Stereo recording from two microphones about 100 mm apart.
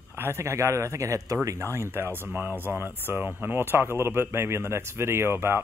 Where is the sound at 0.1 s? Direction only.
25° right (ahead or behind).